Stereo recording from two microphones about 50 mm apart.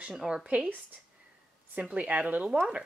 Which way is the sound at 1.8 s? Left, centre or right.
Right.